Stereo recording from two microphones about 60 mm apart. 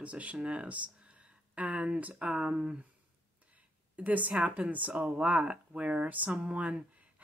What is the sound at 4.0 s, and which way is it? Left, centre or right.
Speech, right.